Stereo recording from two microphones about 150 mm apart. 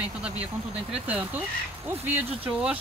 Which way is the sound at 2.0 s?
10° right (ahead or behind).